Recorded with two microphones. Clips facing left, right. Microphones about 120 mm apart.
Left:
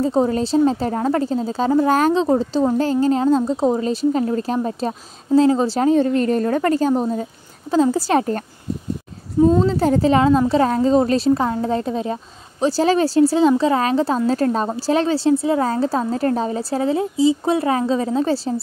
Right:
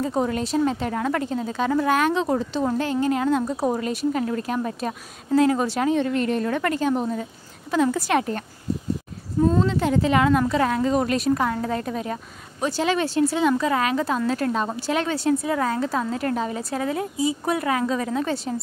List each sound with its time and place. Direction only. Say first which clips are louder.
0.0 s a woman's voice: left 6 dB; 30° left (ahead or behind)
9.6 s a woman's voice: left 4 dB; 35° left (ahead or behind)